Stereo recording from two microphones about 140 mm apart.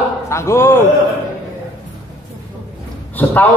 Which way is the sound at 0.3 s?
20° left (ahead or behind).